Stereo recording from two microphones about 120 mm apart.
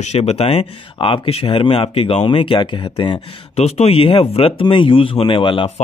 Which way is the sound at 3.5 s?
60° left (ahead or behind).